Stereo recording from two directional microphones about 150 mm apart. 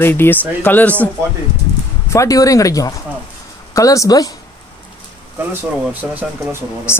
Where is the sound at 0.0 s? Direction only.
15° left (ahead or behind).